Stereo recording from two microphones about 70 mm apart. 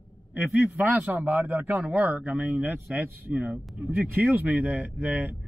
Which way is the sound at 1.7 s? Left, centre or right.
Centre.